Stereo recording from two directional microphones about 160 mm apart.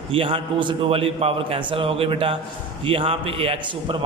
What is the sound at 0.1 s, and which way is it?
A man's voice, 35° right (ahead or behind).